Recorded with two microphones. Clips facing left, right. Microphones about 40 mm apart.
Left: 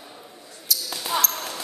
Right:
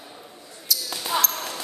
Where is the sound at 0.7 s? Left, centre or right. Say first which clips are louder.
Even; centre.